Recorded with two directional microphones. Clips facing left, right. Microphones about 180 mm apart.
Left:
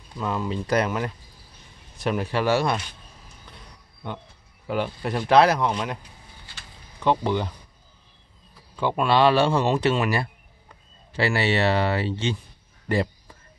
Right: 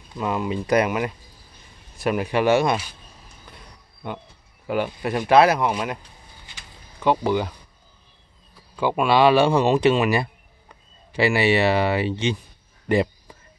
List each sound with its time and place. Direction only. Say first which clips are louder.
0.2 s speech: right 3 dB; 15° right (ahead or behind)
4.6 s speech: right 2 dB; 10° right (ahead or behind)
7.0 s speech: right 2 dB; 5° right (ahead or behind)
8.7 s speech: right 2 dB; 10° right (ahead or behind)
12.8 s a sound: right 4 dB; 15° right (ahead or behind)